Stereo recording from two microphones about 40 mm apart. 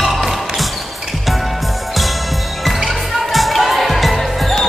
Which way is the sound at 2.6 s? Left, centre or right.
Centre.